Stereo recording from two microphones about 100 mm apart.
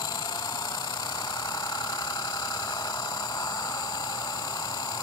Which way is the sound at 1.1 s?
45° left (ahead or behind).